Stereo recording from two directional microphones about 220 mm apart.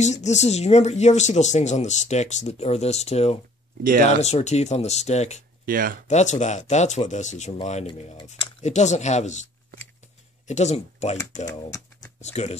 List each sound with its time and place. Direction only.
0.0 s speech: 30° left (ahead or behind)
3.8 s speech: 40° right (ahead or behind)
4.2 s speech: 30° left (ahead or behind)
5.7 s speech: 40° right (ahead or behind)
6.0 s speech: 30° left (ahead or behind)
12.2 s speech: 30° left (ahead or behind)